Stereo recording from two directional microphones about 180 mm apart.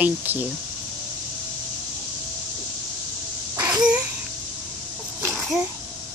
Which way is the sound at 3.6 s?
20° right (ahead or behind).